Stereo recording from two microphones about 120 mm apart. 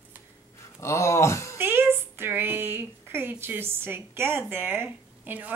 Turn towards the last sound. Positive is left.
turn(degrees=-15)  # may be behind; listen again after turning